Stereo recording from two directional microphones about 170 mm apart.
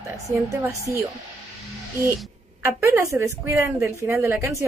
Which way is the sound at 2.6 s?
15° right (ahead or behind).